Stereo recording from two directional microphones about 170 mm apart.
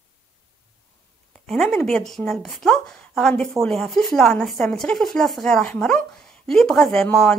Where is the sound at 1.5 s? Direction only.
Centre (ahead or behind).